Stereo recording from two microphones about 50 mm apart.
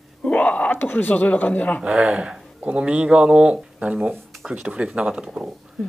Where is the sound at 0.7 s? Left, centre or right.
Left.